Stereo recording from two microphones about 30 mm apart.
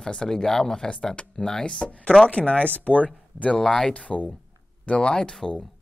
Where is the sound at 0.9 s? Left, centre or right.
Left.